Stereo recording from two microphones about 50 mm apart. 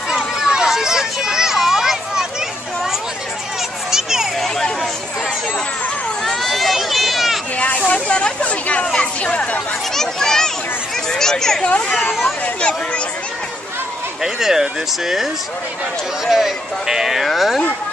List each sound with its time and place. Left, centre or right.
0.1 s children playing: centre
3.9 s a sound: centre
6.2 s run: centre
7.5 s a sound: left
7.9 s chatter: left
9.9 s a sound: centre
11.1 s speech: centre
12.5 s speech: left
14.2 s speech: centre
16.3 s speech: centre